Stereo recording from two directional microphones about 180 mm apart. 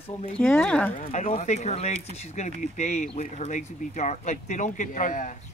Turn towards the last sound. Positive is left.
turn(degrees=45)  # may be behind; listen again after turning